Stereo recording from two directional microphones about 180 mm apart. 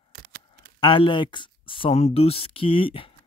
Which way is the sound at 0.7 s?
30° left (ahead or behind).